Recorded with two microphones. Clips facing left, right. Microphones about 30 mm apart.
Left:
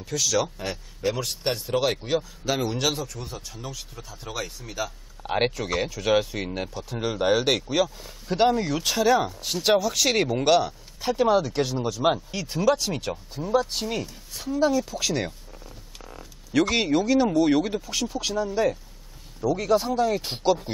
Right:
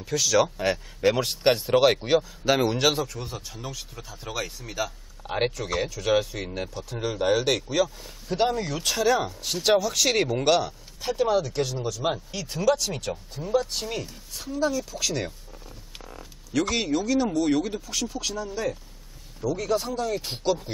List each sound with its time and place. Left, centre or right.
0.0 s speech: centre
0.6 s speech: right; by 4.9 s centre
5.2 s speech: centre
14.6 s speech: centre
15.6 s a sound: centre
16.7 s speech: centre